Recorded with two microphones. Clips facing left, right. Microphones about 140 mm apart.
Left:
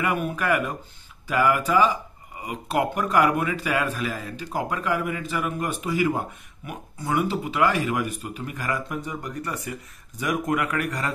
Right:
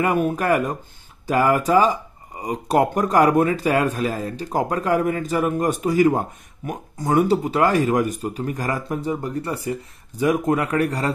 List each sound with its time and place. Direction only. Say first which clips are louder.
0.0 s speech: right 5 dB; 40° right (ahead or behind)